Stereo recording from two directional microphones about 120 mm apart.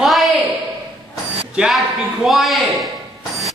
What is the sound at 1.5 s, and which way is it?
A man's voice, 5° right (ahead or behind).